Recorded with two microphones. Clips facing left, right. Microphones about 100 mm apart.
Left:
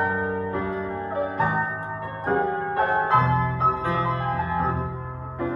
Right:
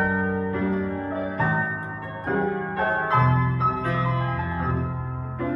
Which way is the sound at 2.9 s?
15° left (ahead or behind).